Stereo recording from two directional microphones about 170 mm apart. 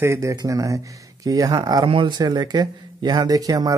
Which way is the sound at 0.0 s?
15° right (ahead or behind).